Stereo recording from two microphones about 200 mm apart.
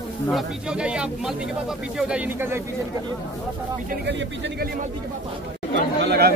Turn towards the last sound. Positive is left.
turn(degrees=-55)  # may be behind; listen again after turning